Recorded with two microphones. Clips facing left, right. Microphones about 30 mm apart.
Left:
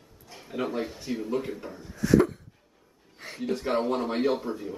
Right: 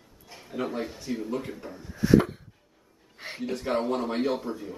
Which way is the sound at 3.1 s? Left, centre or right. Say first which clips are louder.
Right 2 dB; right.